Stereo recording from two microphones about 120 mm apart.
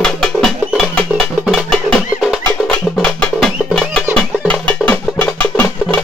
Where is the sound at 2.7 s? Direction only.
10° left (ahead or behind).